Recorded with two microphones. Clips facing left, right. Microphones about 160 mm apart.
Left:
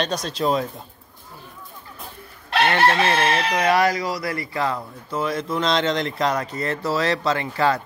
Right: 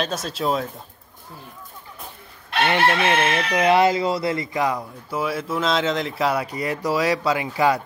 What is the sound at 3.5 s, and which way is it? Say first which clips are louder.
Speech: right 4 dB; 25° right (ahead or behind).